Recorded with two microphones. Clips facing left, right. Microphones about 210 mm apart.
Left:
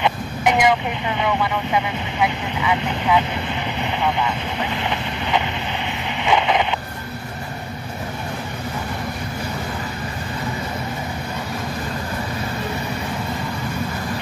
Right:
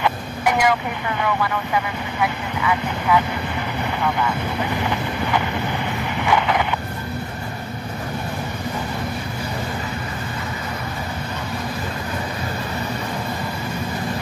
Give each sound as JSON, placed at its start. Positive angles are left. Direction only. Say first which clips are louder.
{"t": 0.0, "sound": "vehicle", "louder": "left 1 dB", "side_deg": 20}
{"t": 1.2, "sound": "speech", "louder": "left 1 dB", "side_deg": 20}